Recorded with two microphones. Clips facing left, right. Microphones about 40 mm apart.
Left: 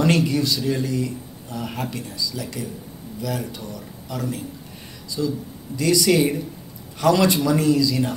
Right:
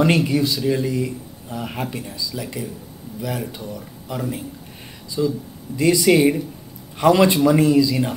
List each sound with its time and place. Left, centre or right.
0.0 s speech: centre